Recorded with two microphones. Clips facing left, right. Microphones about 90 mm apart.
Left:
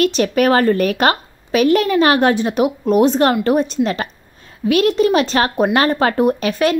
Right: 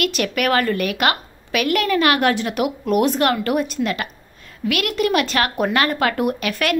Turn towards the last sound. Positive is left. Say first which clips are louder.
# left 5 dB
turn(degrees=25)  # may be behind; listen again after turning